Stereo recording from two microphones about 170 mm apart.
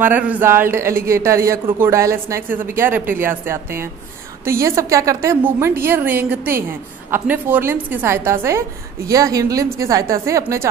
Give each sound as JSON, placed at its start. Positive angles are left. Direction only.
{"t": 0.0, "sound": "a woman's voice", "side_deg": -10}